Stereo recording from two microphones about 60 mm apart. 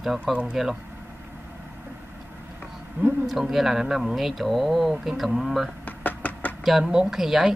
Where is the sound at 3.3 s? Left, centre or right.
Centre.